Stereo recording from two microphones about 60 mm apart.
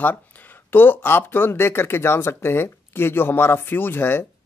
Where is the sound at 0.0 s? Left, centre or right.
Left.